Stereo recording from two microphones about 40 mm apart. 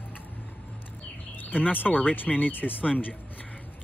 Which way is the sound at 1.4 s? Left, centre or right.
Left.